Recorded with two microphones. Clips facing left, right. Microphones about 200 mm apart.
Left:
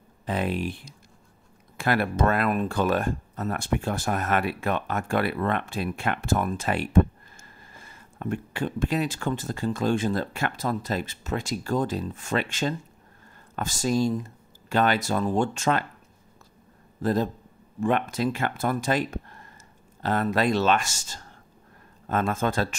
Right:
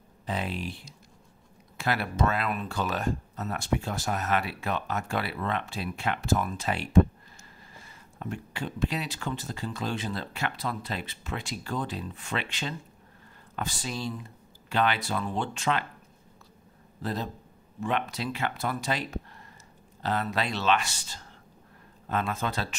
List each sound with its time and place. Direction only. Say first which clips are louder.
0.3 s speech: left 5 dB; 55° left (ahead or behind)
17.0 s speech: left 8 dB; 50° left (ahead or behind)